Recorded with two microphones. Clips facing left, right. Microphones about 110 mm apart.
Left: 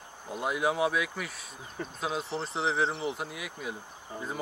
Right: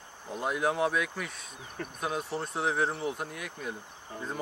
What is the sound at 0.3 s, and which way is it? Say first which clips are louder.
Speech: even; 5° left (ahead or behind).